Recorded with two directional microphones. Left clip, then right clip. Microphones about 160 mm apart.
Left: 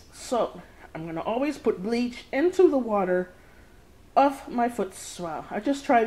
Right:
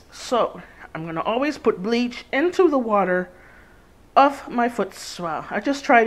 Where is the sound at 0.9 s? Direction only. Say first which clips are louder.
Right 5 dB; 25° right (ahead or behind).